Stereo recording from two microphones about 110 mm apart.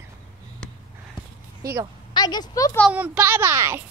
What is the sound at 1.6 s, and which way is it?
Speech, 30° right (ahead or behind).